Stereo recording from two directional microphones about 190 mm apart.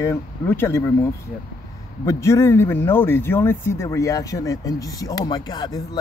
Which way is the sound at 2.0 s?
15° left (ahead or behind).